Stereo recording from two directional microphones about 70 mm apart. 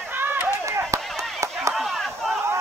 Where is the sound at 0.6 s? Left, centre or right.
Right.